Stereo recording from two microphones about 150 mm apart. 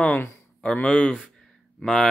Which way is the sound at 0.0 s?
10° left (ahead or behind).